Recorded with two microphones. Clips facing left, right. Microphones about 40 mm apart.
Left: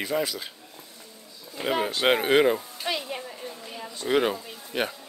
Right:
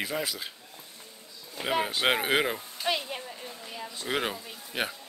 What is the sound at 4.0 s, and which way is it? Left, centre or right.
Speech, centre.